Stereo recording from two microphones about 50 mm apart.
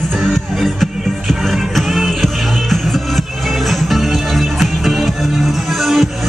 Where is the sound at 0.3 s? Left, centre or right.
Centre.